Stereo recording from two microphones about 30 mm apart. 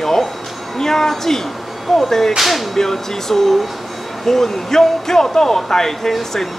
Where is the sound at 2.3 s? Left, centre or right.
Centre.